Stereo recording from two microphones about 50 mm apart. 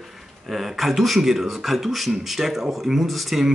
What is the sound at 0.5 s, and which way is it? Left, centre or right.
Speech, centre.